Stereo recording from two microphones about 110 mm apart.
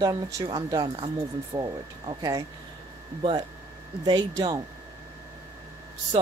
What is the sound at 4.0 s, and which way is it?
Speech, 40° right (ahead or behind).